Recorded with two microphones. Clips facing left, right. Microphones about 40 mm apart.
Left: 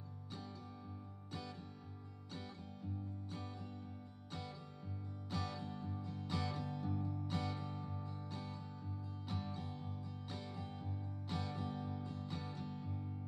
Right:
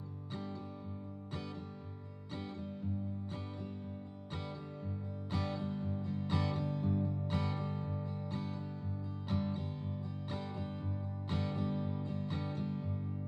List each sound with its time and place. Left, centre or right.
4.3 s music: right
8.0 s music: right